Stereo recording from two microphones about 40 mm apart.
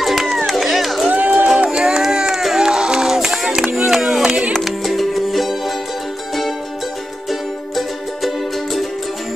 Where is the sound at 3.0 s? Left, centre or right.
Centre.